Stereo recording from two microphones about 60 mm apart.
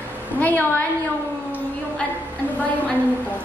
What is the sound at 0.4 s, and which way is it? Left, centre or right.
Speech, left.